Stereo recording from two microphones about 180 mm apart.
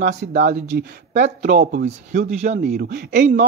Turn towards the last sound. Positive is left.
turn(degrees=-70)  # may be behind; listen again after turning